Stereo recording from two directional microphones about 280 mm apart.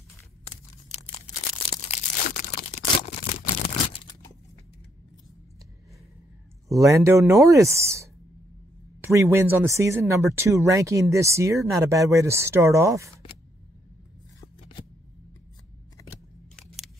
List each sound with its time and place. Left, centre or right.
0.5 s tearing: left
1.9 s a sound: left
6.7 s speech: centre
14.4 s shuffling cards: centre